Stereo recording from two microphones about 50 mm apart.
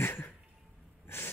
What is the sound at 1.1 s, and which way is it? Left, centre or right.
Gasp, left.